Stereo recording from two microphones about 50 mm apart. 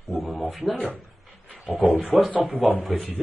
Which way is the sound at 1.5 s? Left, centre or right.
Right.